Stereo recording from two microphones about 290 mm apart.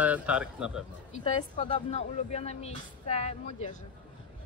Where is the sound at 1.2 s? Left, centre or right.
Left.